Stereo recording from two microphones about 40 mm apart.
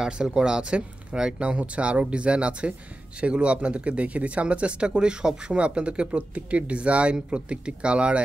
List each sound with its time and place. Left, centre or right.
0.0 s speech: centre